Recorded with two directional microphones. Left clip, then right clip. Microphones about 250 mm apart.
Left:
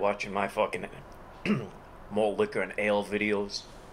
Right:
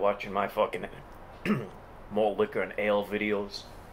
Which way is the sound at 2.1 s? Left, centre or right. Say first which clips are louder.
Even; centre.